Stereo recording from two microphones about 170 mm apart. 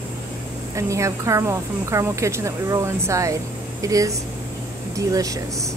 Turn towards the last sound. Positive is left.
turn(degrees=-20)  # may be behind; listen again after turning